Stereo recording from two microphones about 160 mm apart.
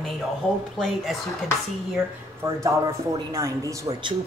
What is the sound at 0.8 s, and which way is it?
Speech, centre (ahead or behind).